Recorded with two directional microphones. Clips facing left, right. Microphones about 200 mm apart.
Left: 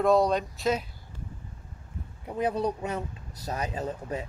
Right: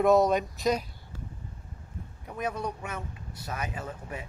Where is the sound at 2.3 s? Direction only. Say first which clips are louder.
Left 5 dB; 30° left (ahead or behind).